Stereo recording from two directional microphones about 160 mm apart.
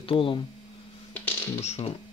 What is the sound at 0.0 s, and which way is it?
Speech, 35° left (ahead or behind).